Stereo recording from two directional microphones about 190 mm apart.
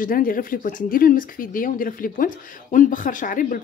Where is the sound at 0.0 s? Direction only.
50° left (ahead or behind).